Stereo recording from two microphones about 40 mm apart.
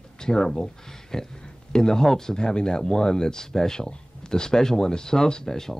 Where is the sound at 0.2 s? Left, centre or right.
Centre.